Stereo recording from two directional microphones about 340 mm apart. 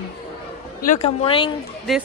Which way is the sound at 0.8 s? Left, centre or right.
Left.